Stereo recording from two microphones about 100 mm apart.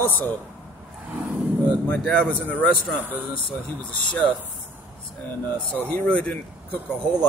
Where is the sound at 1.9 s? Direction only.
10° left (ahead or behind).